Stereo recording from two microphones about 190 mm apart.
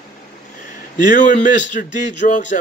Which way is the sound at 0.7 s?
40° left (ahead or behind).